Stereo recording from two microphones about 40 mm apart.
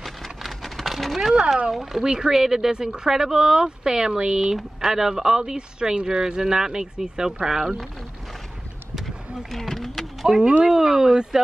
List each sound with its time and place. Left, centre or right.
0.0 s a sound: centre
1.7 s speech: centre
9.5 s speech: centre
10.4 s speech: right